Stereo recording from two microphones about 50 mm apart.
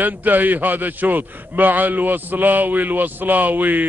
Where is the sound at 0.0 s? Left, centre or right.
Right.